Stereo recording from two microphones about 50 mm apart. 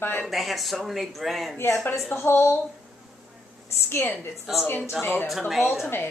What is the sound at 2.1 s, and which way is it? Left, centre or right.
Speech, left.